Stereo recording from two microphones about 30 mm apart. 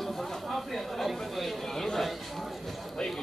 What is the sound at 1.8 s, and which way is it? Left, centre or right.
Speech, centre.